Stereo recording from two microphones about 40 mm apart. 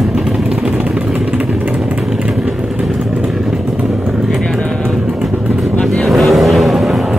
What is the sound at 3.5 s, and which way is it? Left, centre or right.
Vehicle, centre.